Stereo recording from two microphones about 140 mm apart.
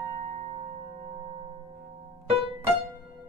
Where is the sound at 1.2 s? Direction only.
35° right (ahead or behind).